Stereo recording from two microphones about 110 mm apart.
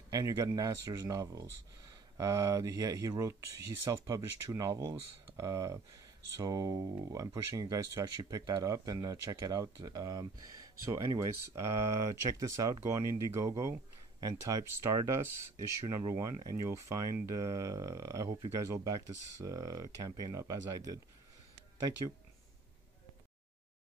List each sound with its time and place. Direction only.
0.1 s speech: 30° right (ahead or behind)